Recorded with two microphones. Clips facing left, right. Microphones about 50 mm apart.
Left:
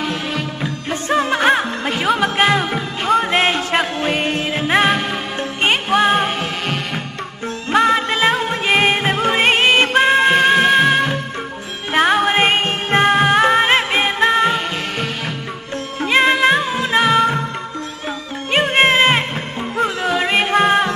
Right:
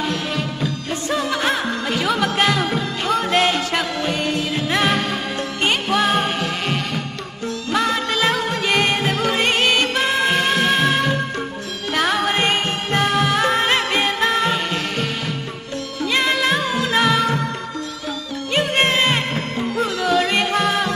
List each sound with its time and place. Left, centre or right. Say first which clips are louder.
0.6 s music: left 1 dB; left
4.0 s music: left 2 dB; left; by 6.2 s centre
7.7 s music: left 6 dB; left
11.9 s music: left 5 dB; left
16.0 s music: left 5 dB; left
18.5 s music: left 4 dB; left